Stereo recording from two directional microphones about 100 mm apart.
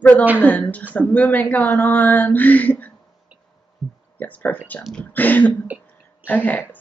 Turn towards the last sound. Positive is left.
turn(degrees=15)  # may be behind; listen again after turning